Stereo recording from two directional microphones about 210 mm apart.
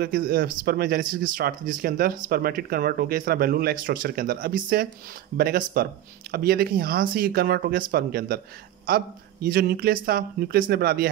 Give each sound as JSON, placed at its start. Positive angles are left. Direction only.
{"t": 0.0, "sound": "speech", "side_deg": -45}